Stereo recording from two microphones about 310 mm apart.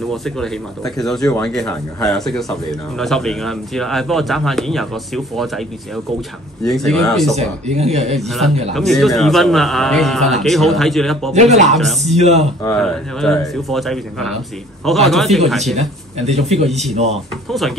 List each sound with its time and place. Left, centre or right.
0.1 s speech: centre
7.3 s speech: right
8.7 s speech: centre
11.3 s speech: right
11.7 s speech: centre
12.2 s speech: right
12.6 s speech: centre
15.7 s speech: right
17.5 s speech: centre